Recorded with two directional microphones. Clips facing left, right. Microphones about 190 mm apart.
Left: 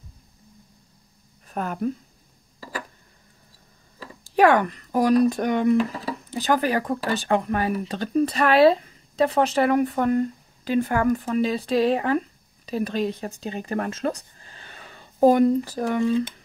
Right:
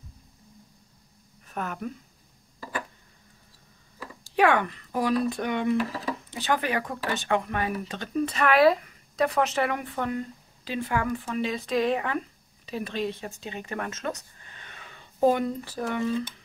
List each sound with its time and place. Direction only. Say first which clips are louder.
1.5 s speech: left 6 dB; 35° left (ahead or behind)
4.4 s speech: left 5 dB; 40° left (ahead or behind)